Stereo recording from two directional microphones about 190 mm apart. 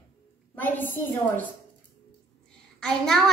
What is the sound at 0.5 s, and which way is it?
Speech, 10° left (ahead or behind).